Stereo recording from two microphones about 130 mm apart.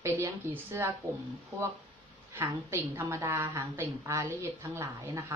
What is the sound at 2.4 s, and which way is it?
A woman's voice, 20° right (ahead or behind).